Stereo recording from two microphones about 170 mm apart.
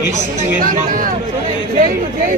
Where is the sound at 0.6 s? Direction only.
50° right (ahead or behind).